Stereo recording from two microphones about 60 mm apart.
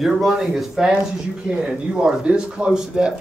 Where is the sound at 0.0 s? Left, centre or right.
Centre.